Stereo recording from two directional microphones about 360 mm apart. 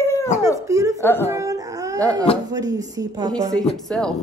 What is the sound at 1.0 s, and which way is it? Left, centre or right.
Speech, centre.